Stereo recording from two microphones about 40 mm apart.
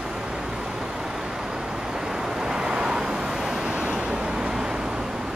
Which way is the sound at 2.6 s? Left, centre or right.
Centre.